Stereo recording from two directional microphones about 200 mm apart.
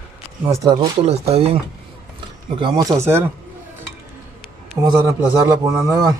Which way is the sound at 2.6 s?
20° right (ahead or behind).